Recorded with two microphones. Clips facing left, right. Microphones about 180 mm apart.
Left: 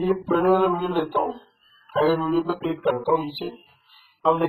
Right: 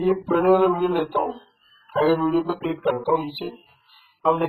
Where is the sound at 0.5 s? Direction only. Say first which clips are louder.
Right 4 dB; 15° right (ahead or behind).